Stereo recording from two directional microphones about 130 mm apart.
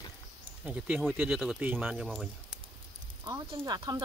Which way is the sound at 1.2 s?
Centre (ahead or behind).